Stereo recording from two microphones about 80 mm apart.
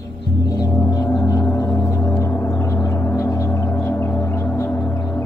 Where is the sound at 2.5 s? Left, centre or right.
Left.